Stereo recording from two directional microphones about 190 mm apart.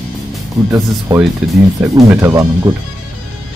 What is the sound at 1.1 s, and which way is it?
Speech, 20° right (ahead or behind).